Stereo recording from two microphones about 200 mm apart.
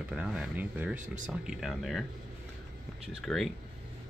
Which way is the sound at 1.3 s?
Centre (ahead or behind).